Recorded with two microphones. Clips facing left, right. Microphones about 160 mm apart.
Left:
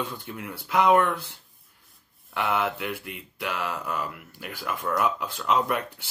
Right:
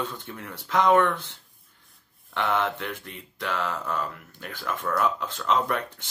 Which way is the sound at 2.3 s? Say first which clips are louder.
Even; 10° left (ahead or behind).